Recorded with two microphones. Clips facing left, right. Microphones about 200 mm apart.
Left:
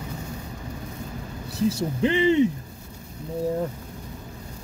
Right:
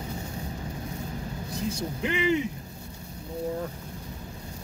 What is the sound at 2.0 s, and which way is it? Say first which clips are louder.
Speech: left 7 dB; 30° left (ahead or behind).